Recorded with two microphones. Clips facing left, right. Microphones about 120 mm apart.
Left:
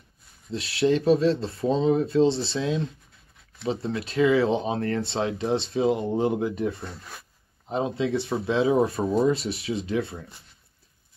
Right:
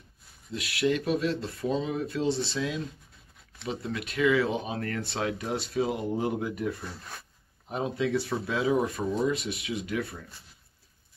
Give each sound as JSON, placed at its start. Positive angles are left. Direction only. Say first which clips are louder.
{"t": 0.5, "sound": "speech", "louder": "left 5 dB", "side_deg": 30}